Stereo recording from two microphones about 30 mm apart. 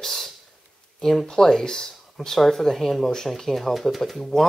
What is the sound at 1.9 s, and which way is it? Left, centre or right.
Speech, centre.